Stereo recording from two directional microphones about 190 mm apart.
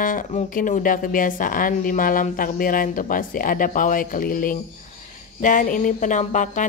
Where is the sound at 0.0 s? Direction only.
45° left (ahead or behind).